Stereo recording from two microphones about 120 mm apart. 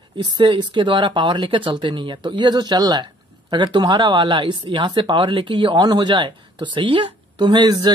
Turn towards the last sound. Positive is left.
turn(degrees=-35)  # may be behind; listen again after turning